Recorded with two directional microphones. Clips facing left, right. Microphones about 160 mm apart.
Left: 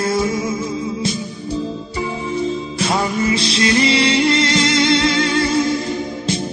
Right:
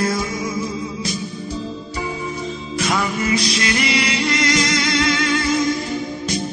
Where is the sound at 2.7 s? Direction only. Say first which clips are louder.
Even; 30° left (ahead or behind).